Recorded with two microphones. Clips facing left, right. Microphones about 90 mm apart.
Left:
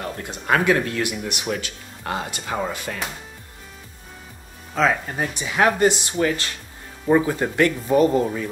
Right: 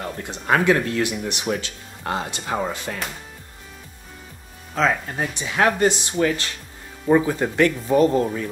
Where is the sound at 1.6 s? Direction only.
20° right (ahead or behind).